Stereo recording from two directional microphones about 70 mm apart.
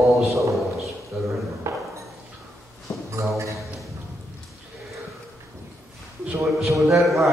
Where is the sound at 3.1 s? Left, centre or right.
Right.